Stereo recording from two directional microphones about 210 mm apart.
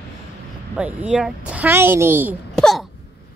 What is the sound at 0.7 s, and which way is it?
A woman's voice, 5° right (ahead or behind).